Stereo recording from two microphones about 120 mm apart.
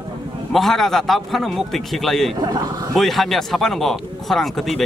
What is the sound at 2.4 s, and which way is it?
Speech, 35° right (ahead or behind).